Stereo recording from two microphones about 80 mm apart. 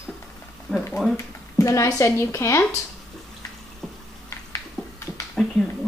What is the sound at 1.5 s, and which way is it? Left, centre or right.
Speech, left.